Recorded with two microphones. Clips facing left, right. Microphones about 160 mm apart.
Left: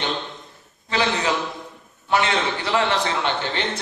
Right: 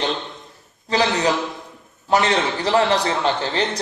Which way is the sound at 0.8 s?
35° right (ahead or behind).